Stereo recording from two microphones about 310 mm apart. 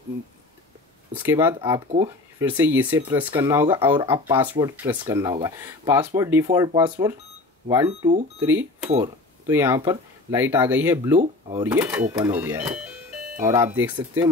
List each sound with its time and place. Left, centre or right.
1.1 s speech: centre
11.1 s speech: centre
11.6 s speech: centre